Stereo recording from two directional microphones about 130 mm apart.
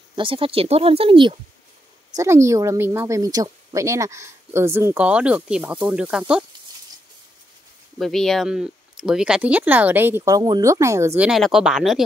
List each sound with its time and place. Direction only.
0.1 s speech: 40° right (ahead or behind)
2.1 s a woman's voice: 20° right (ahead or behind); by 6.4 s 5° right (ahead or behind)
8.0 s speech: centre (ahead or behind); by 10.3 s 15° right (ahead or behind)
10.3 s a woman's voice: 30° right (ahead or behind)
11.1 s speech: 5° right (ahead or behind)